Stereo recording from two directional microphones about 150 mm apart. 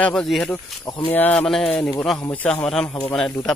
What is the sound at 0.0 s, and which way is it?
Speech, 5° left (ahead or behind).